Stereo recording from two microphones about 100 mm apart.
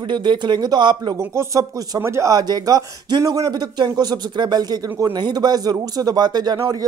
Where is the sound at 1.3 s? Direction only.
30° right (ahead or behind).